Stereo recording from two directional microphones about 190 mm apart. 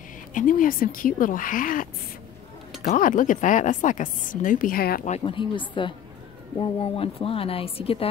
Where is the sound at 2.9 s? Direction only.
45° left (ahead or behind).